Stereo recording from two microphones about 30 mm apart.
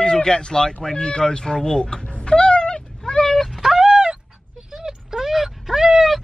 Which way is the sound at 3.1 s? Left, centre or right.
Left.